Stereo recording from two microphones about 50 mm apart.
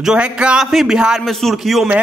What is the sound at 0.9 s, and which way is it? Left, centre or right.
Speech, centre.